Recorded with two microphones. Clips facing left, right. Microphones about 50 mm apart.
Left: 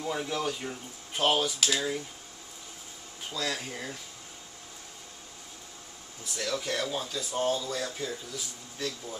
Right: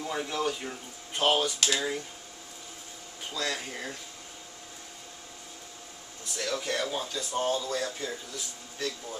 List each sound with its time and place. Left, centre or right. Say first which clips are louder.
0.0 s speech: even; centre
3.3 s speech: even; centre
6.3 s speech: right 1 dB; centre